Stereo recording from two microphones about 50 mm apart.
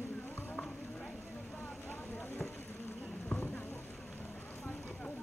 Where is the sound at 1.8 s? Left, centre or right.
Left.